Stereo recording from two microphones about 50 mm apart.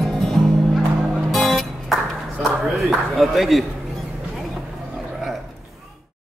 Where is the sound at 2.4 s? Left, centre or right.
Centre.